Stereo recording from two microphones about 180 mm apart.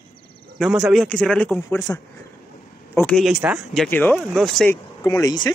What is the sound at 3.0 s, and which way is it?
Speech, 5° left (ahead or behind).